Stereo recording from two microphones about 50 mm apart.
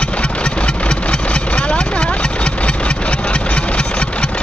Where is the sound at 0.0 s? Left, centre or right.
Left.